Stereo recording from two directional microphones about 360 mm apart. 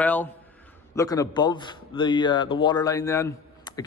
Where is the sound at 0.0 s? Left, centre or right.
Centre.